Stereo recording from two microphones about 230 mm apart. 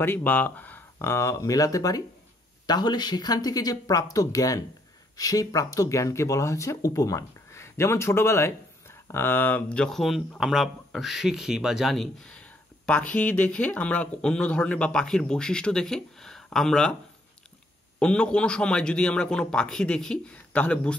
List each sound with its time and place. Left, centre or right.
0.0 s speech: centre
17.9 s speech: centre